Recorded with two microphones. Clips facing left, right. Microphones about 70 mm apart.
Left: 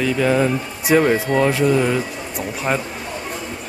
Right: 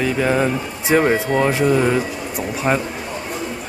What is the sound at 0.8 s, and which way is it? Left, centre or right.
Speech, right.